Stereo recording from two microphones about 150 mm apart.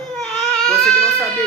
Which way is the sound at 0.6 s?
5° left (ahead or behind).